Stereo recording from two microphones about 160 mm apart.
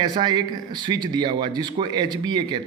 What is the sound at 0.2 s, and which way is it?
Speech, 25° right (ahead or behind).